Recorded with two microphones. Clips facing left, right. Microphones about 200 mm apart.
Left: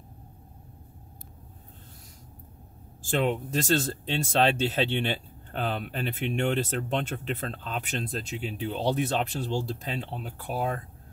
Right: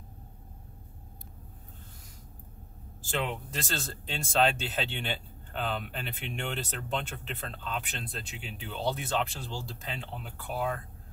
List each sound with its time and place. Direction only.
3.1 s speech: 45° left (ahead or behind)